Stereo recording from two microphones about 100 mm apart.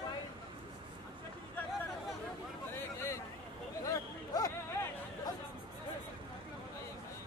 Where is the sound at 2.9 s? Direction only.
25° left (ahead or behind).